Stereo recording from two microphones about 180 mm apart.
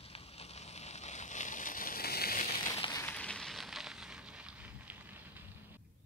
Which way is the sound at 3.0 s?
5° left (ahead or behind).